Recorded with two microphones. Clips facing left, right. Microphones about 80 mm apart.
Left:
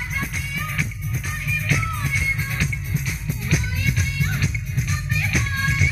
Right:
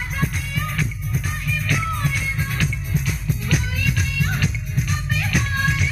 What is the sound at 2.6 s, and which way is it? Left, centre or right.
Music, right.